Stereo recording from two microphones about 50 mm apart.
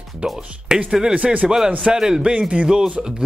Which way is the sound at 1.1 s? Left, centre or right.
Right.